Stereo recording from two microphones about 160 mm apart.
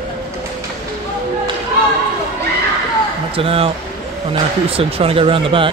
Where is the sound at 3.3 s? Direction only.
35° right (ahead or behind).